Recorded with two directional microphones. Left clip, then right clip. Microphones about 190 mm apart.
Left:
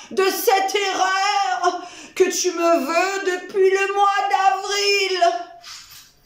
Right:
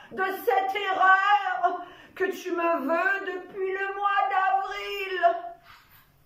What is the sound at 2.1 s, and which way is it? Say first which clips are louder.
Speech: left 9 dB; 20° left (ahead or behind).